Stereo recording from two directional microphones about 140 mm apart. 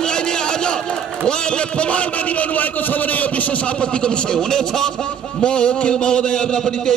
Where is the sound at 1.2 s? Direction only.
5° left (ahead or behind).